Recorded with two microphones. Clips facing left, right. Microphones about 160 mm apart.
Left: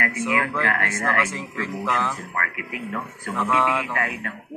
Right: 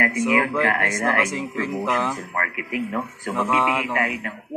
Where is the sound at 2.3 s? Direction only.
30° right (ahead or behind).